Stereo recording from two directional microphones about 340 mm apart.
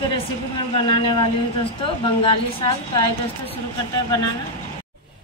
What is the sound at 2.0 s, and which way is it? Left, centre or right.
Speech, centre.